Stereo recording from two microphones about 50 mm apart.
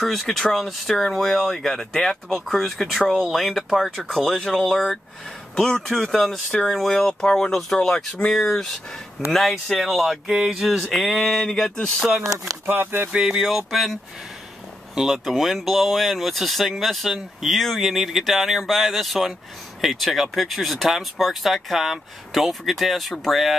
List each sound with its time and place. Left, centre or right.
0.0 s speech: centre
5.6 s speech: centre
6.0 s speech: centre
7.5 s speech: centre
12.6 s speech: right
13.1 s speech: centre
15.0 s speech: centre